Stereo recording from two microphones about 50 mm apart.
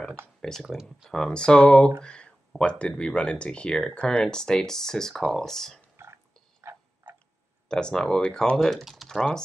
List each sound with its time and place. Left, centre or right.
0.4 s speech: centre
0.7 s speech: centre
1.3 s speech: centre
6.0 s a sound: right
7.6 s speech: centre
8.5 s speech: centre